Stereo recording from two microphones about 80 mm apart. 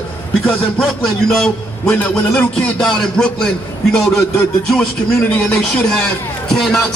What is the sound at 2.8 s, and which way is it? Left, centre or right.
Speech, centre.